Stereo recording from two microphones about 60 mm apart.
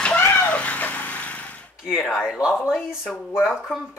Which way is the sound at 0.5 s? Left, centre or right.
Left.